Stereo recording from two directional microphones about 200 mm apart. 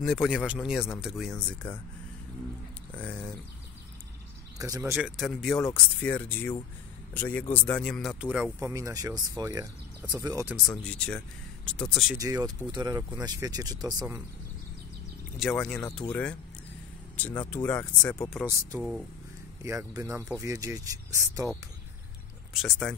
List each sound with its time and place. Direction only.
0.0 s speech: centre (ahead or behind)
3.0 s speech: 5° left (ahead or behind)
4.6 s speech: 15° right (ahead or behind)
4.9 s speech: centre (ahead or behind)
8.5 s speech: 15° right (ahead or behind)
10.5 s speech: 5° left (ahead or behind)
12.2 s speech: 15° right (ahead or behind)
15.3 s speech: centre (ahead or behind)
17.4 s speech: 10° left (ahead or behind)
18.8 s speech: 5° right (ahead or behind)
19.6 s speech: 15° right (ahead or behind)
22.5 s speech: centre (ahead or behind)